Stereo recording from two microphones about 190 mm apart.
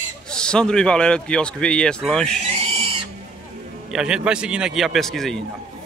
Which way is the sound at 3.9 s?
5° right (ahead or behind).